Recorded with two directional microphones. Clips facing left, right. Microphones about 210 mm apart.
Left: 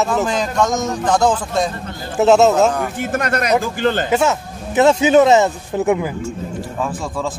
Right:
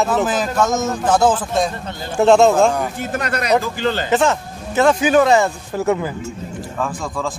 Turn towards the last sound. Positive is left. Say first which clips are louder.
# left 1 dB
turn(degrees=5)  # may be behind; listen again after turning